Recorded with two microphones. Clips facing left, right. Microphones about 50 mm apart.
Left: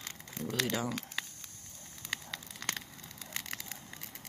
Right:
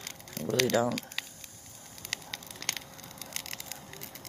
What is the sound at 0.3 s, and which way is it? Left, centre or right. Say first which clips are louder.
Speech: right 7 dB; right.